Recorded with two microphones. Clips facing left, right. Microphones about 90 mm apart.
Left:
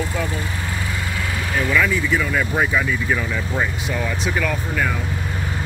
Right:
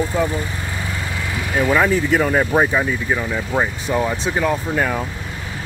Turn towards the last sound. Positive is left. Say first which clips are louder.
# right 3 dB
turn(degrees=-55)  # may be behind; listen again after turning